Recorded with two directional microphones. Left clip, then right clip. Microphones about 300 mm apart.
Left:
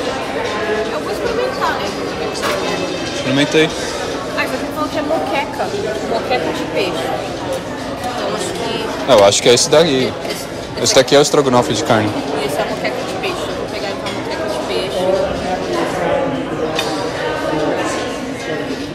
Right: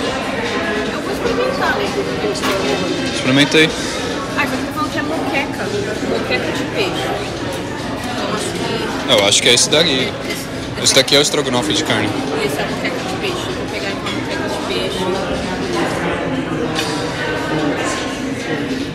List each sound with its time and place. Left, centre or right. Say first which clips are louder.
3.3 s speech: right 1 dB; centre
9.1 s speech: left 3 dB; centre